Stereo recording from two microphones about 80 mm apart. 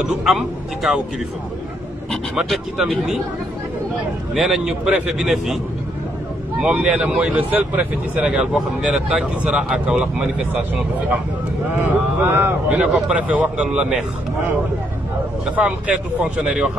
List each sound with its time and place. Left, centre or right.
0.0 s a man's voice: centre
2.3 s a man's voice: centre
4.3 s a man's voice: centre
6.6 s speech: centre
8.3 s speech: centre
15.4 s speech: centre